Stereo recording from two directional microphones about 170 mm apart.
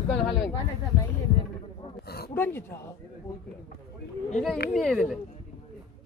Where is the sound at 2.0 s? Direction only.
65° left (ahead or behind).